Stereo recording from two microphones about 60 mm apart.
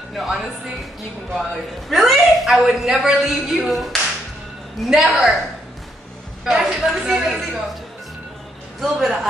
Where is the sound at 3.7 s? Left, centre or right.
Centre.